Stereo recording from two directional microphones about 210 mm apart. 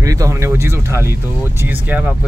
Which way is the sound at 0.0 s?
15° right (ahead or behind).